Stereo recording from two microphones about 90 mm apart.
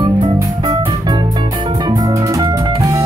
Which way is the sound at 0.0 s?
60° right (ahead or behind).